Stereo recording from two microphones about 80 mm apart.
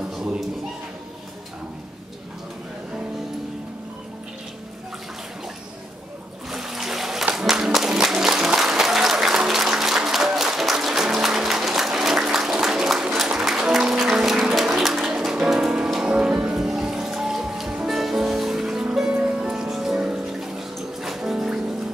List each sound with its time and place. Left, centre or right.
0.1 s a sound: centre
6.5 s water: centre
7.3 s applause: centre